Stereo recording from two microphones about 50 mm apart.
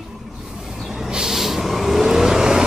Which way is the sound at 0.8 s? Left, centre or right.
Centre.